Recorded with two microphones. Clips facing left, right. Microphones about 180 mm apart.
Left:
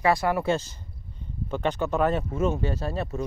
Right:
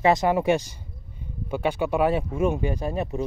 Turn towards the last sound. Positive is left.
turn(degrees=-15)  # may be behind; listen again after turning